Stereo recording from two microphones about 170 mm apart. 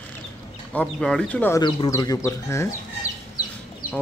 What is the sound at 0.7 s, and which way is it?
Speech, 5° left (ahead or behind).